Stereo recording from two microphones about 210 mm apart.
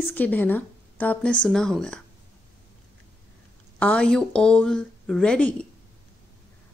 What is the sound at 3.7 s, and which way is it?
Speech, 5° left (ahead or behind).